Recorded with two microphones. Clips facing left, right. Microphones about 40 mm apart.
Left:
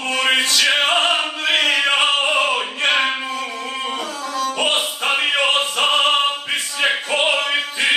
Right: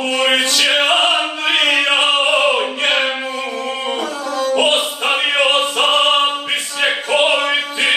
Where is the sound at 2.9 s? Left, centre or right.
Centre.